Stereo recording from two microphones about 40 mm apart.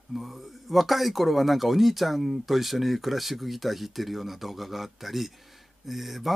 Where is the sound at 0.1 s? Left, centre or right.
Centre.